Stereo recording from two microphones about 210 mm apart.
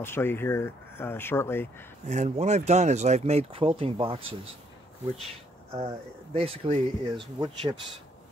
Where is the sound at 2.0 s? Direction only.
35° right (ahead or behind).